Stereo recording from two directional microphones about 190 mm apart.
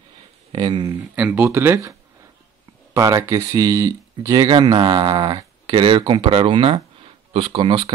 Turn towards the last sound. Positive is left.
turn(degrees=-25)  # may be behind; listen again after turning